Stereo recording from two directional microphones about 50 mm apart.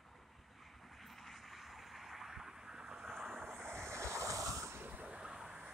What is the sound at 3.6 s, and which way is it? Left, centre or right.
Waves, right.